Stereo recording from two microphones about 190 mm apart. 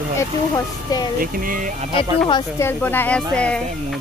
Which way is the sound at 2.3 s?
15° left (ahead or behind).